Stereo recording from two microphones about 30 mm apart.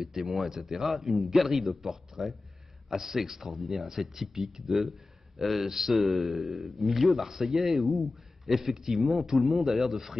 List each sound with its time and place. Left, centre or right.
0.0 s a man's voice: centre